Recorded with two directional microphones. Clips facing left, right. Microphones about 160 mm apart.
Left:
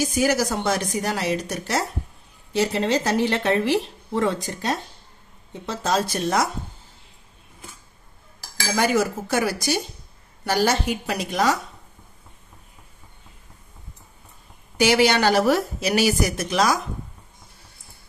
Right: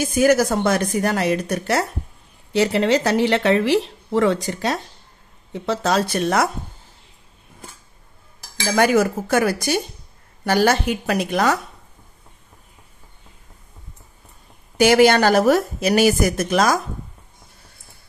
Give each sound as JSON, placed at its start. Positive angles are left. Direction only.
{"t": 0.0, "sound": "a woman's voice", "side_deg": -55}
{"t": 2.5, "sound": "speech", "side_deg": -70}
{"t": 8.7, "sound": "a woman's voice", "side_deg": -55}
{"t": 14.8, "sound": "a woman's voice", "side_deg": -50}